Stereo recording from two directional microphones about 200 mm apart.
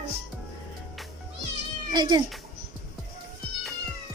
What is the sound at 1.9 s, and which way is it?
Speech, 20° right (ahead or behind).